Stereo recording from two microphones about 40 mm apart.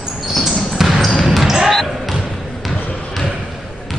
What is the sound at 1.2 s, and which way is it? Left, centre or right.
Basketball bounce, centre.